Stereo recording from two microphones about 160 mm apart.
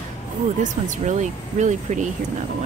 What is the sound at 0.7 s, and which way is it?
Speech, 50° right (ahead or behind).